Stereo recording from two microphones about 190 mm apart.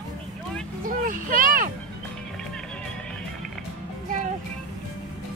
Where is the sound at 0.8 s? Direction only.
45° right (ahead or behind).